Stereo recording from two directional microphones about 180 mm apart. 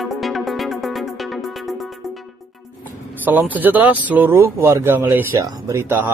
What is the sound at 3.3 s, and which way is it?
Speech, 10° right (ahead or behind).